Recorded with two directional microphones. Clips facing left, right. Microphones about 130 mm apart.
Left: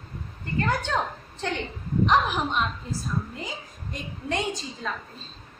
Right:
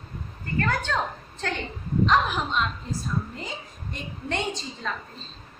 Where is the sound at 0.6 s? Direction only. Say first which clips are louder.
Even; 15° left (ahead or behind).